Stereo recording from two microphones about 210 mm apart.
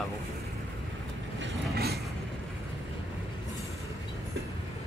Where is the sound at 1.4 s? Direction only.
50° right (ahead or behind).